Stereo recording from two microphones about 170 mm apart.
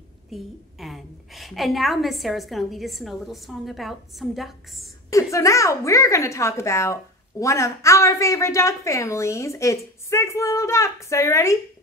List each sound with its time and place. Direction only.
0.3 s a woman's voice: centre (ahead or behind)
5.1 s a woman's voice: 20° left (ahead or behind)